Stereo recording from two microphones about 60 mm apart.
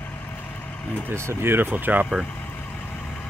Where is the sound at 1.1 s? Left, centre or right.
Right.